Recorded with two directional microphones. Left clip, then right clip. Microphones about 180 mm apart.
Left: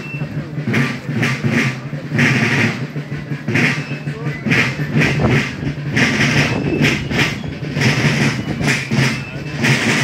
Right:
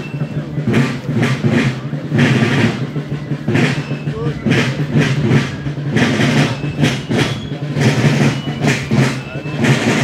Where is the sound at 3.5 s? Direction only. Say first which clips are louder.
Left 1 dB; 40° right (ahead or behind).